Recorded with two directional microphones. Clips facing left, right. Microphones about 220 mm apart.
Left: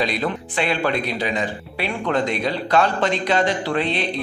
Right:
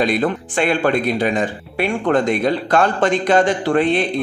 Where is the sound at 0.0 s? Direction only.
50° right (ahead or behind).